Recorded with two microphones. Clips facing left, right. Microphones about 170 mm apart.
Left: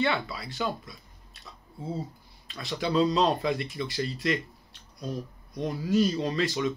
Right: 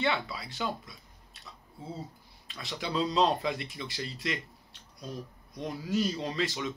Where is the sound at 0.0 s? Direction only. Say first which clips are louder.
Left 3 dB; 20° right (ahead or behind).